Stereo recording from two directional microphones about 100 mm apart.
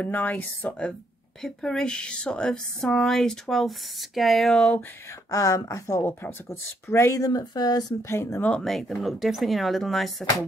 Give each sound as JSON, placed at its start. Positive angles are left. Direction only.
{"t": 0.0, "sound": "speech", "side_deg": 15}
{"t": 5.3, "sound": "speech", "side_deg": 35}
{"t": 8.1, "sound": "speech", "side_deg": 25}
{"t": 8.5, "sound": "speech", "side_deg": 5}